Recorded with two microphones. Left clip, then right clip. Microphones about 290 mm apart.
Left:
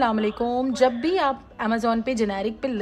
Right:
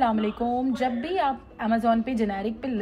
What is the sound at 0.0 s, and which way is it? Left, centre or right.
A woman's voice, centre.